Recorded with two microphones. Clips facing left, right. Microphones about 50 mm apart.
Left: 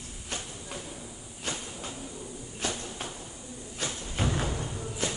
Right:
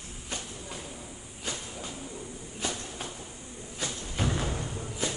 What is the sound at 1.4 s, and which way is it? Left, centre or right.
Train, left.